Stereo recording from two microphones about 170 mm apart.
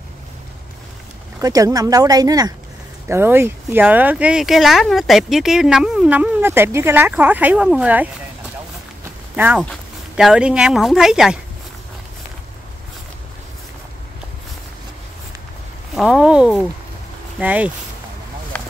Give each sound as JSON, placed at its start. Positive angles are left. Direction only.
{"t": 1.4, "sound": "speech", "side_deg": -20}
{"t": 9.3, "sound": "speech", "side_deg": -10}
{"t": 15.9, "sound": "speech", "side_deg": -5}
{"t": 18.5, "sound": "a sound", "side_deg": 10}